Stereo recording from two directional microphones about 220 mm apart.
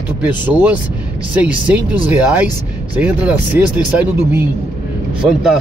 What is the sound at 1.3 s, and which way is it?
A man's voice, 5° right (ahead or behind).